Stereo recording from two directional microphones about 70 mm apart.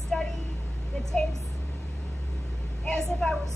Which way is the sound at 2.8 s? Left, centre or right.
Centre.